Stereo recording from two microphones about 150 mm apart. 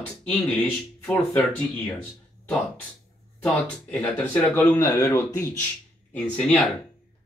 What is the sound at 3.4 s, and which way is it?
Speech, 10° left (ahead or behind).